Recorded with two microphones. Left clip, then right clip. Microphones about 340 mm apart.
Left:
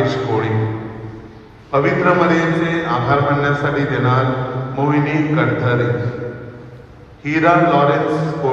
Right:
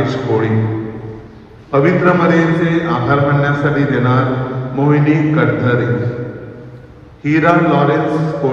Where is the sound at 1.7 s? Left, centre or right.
Left.